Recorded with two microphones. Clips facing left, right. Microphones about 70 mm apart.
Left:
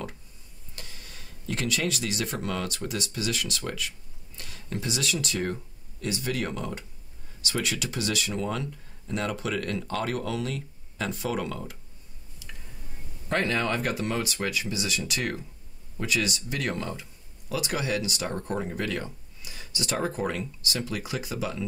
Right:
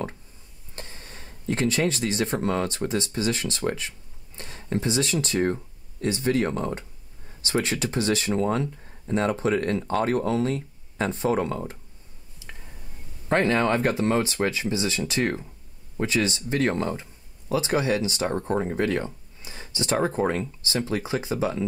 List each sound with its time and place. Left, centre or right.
0.7 s speech: right
13.3 s speech: right